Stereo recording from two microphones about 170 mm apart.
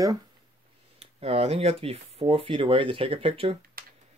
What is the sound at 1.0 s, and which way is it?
Speech, 35° right (ahead or behind).